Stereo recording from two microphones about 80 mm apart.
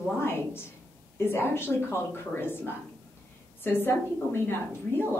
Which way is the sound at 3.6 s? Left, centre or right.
Left.